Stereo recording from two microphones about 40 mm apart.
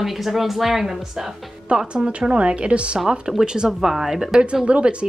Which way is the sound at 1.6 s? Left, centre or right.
Right.